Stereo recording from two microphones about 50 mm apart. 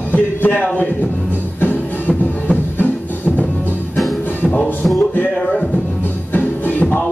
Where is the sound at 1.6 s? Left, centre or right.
Left.